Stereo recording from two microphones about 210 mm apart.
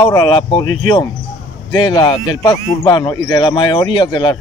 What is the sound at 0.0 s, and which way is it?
Speech, 20° left (ahead or behind).